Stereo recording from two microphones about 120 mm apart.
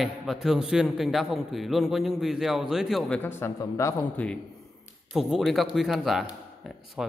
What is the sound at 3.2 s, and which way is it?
Speech, 20° left (ahead or behind).